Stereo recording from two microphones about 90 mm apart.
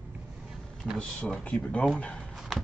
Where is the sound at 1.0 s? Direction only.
10° left (ahead or behind).